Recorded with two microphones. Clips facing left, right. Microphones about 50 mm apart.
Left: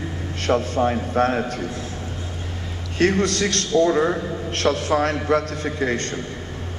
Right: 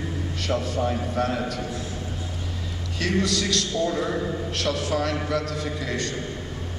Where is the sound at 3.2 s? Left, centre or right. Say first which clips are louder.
Left 3 dB; left.